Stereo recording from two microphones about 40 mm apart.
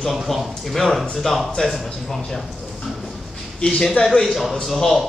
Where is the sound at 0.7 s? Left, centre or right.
Centre.